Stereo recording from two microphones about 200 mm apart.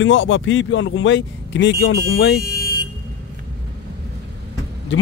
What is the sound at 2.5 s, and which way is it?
Vehicle, 55° right (ahead or behind).